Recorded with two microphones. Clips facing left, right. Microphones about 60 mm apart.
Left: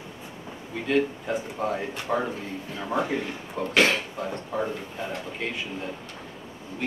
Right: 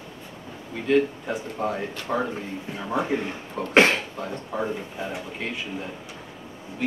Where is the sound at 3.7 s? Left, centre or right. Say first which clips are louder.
Right 4 dB; right.